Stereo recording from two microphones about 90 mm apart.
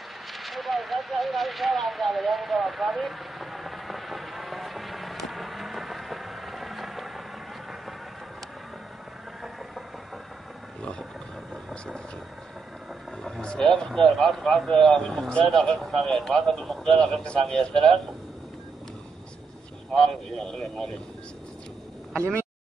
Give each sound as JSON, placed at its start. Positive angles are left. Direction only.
{"t": 0.3, "sound": "a sound", "side_deg": 0}
{"t": 10.8, "sound": "roaring cats", "side_deg": 10}
{"t": 13.2, "sound": "a sound", "side_deg": 10}
{"t": 13.7, "sound": "speech", "side_deg": 5}
{"t": 19.9, "sound": "speech", "side_deg": 5}
{"t": 22.1, "sound": "speech", "side_deg": -30}